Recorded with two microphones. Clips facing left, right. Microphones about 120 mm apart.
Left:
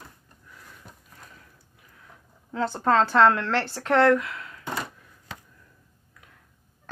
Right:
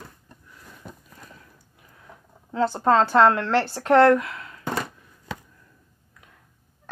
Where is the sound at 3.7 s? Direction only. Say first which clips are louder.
Right 4 dB; 40° right (ahead or behind).